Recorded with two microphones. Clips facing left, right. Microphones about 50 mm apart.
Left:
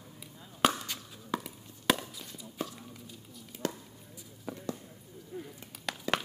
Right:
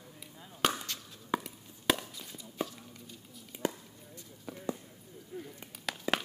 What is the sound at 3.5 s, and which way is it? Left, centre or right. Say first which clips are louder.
Chop: right 1 dB; centre.